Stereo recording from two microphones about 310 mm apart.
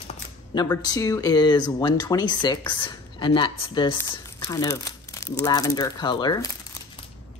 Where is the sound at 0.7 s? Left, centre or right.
Centre.